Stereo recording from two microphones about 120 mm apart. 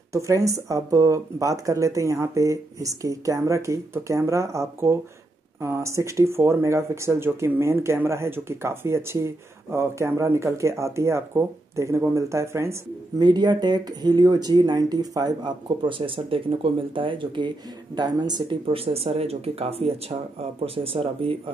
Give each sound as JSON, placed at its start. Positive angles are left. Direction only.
{"t": 0.1, "sound": "speech", "side_deg": -25}
{"t": 13.2, "sound": "speech", "side_deg": -40}
{"t": 18.7, "sound": "speech", "side_deg": -55}